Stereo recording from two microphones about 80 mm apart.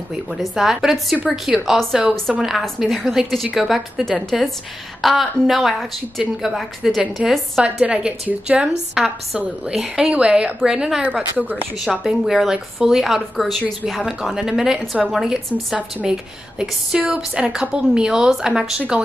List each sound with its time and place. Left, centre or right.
0.3 s speech: centre
7.6 s a woman's voice: centre
11.8 s a woman's voice: centre